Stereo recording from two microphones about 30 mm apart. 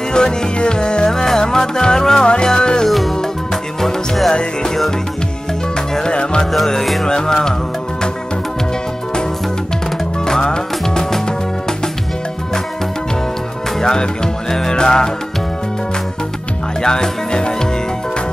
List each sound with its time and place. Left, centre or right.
0.1 s music: left
3.8 s music: centre
4.3 s music: left
6.0 s music: left
10.4 s music: left
13.7 s music: left
16.8 s music: left